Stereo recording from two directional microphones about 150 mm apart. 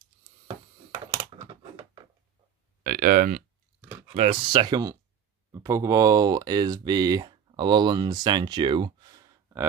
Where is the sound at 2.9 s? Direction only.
75° right (ahead or behind).